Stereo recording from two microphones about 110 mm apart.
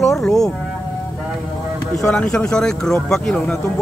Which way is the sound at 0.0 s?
Centre (ahead or behind).